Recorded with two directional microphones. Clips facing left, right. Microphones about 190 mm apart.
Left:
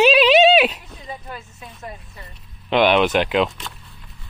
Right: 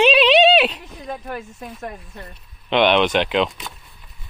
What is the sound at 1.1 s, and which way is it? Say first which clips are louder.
Speech: right 5 dB; 55° right (ahead or behind).